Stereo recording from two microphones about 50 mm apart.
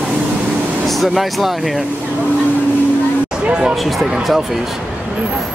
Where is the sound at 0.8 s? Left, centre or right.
Centre.